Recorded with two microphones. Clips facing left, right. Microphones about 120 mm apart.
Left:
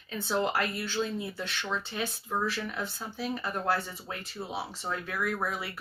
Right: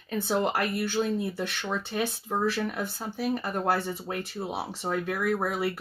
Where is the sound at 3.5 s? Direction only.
20° right (ahead or behind).